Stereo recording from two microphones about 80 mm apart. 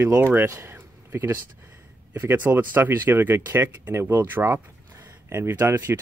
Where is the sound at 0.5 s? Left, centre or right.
Right.